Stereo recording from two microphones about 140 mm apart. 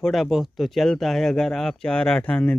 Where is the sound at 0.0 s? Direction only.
Centre (ahead or behind).